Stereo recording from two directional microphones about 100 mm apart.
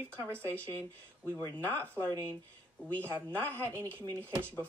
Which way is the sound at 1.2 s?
30° right (ahead or behind).